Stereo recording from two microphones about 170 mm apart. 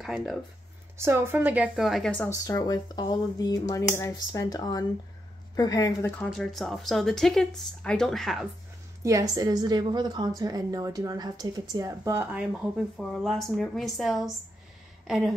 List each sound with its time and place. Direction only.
0.0 s speech: centre (ahead or behind)
0.9 s a woman's voice: 15° right (ahead or behind); by 2.3 s 10° left (ahead or behind)
2.4 s speech: 20° left (ahead or behind)
6.3 s speech: centre (ahead or behind)
9.0 s a woman's voice: 20° right (ahead or behind); by 15.3 s centre (ahead or behind)